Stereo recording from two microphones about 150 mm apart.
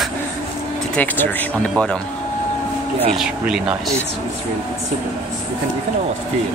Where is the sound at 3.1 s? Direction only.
5° right (ahead or behind).